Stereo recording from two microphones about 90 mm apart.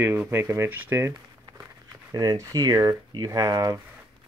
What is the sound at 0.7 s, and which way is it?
Speech, 20° right (ahead or behind).